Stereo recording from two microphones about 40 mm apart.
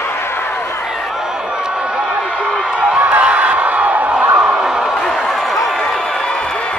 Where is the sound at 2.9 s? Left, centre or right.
Right.